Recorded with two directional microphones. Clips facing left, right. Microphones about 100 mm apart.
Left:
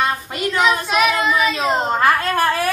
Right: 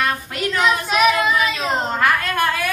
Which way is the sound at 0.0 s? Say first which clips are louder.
Left 1 dB; 25° left (ahead or behind).